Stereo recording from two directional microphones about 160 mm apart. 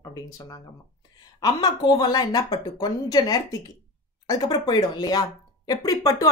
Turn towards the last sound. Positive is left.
turn(degrees=20)  # may be behind; listen again after turning